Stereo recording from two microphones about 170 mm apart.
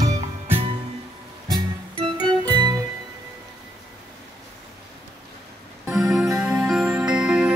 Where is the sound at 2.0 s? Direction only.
25° right (ahead or behind).